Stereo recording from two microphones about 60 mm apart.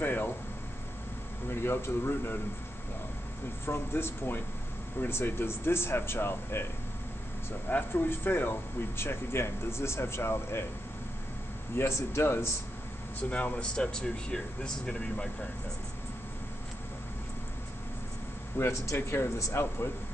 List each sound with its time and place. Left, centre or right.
0.0 s speech: left
1.5 s speech: left
3.6 s speech: left
7.9 s speech: left
11.7 s speech: left
13.3 s speech: left
13.7 s speech: centre
18.6 s speech: left